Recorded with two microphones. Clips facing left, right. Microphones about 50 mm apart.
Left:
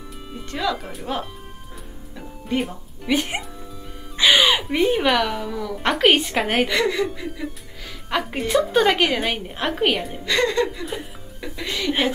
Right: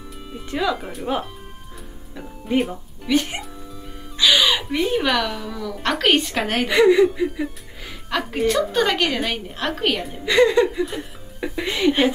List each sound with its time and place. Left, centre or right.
0.3 s speech: centre
3.1 s a woman's voice: centre
4.2 s gasp: left
4.9 s a woman's voice: centre
6.7 s speech: centre
8.1 s a woman's voice: centre
10.2 s speech: centre